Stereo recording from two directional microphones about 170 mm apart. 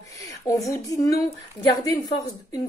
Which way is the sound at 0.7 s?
20° left (ahead or behind).